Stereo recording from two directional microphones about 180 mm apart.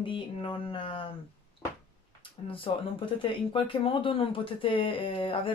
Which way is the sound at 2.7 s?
30° left (ahead or behind).